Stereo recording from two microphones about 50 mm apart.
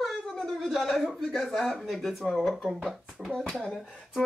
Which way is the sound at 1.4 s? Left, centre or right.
Centre.